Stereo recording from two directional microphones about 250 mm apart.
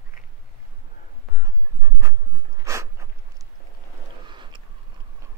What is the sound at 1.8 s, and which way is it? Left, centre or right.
Writing, centre.